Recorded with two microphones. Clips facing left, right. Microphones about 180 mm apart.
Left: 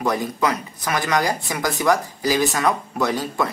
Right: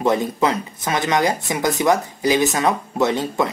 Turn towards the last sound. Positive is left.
turn(degrees=-25)  # may be behind; listen again after turning